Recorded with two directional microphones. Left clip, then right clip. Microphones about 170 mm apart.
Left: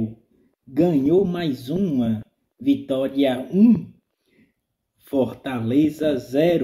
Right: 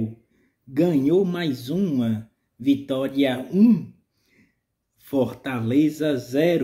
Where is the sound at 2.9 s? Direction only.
15° right (ahead or behind).